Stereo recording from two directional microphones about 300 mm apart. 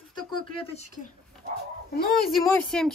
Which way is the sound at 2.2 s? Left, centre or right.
Centre.